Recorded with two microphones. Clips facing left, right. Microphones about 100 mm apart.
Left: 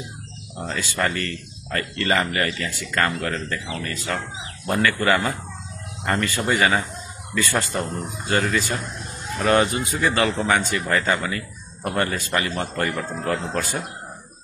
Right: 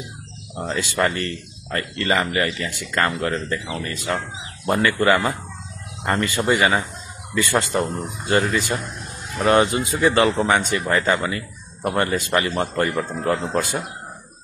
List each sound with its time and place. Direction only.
0.6 s speech: 20° right (ahead or behind)
2.1 s a man's voice: 10° right (ahead or behind)